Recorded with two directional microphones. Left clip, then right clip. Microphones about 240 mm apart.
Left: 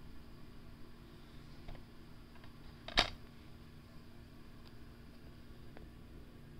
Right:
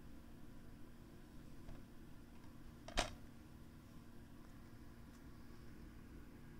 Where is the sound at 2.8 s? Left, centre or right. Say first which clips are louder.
Left 9 dB; centre.